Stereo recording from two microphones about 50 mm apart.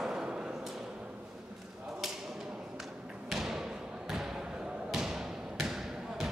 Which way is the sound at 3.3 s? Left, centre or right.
Centre.